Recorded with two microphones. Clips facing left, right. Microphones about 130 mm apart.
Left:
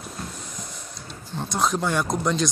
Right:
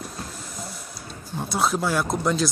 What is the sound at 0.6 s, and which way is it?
Printer, 5° right (ahead or behind).